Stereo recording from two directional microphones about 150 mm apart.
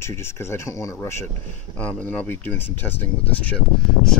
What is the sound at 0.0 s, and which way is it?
Speech, 15° left (ahead or behind).